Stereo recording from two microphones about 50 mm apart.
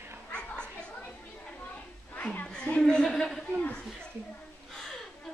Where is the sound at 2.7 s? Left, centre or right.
Centre.